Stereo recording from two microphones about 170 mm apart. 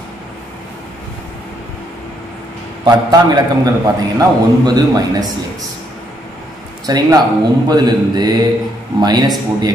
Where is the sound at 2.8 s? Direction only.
20° right (ahead or behind).